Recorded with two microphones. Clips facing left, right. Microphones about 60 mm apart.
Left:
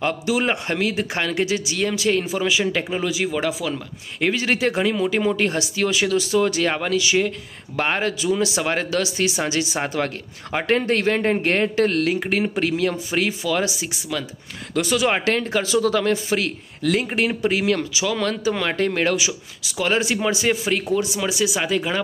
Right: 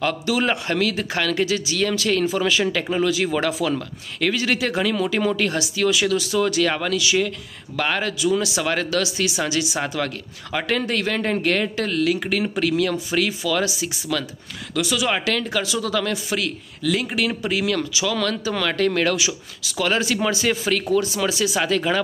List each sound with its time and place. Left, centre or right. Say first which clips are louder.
0.0 s speech: even; left
3.3 s speech: right 2 dB; centre
4.2 s speech: left 1 dB; left
14.1 s speech: right 2 dB; centre
14.7 s speech: left 2 dB; left; by 22.0 s centre